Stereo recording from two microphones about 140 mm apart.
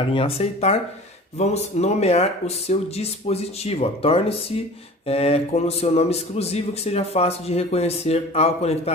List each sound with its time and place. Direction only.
0.1 s speech: 45° left (ahead or behind)